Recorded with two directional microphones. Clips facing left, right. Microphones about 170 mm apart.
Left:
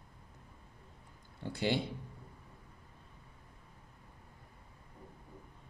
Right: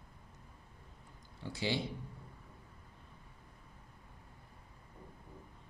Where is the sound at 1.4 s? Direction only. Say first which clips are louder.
Left 3 dB; 55° left (ahead or behind).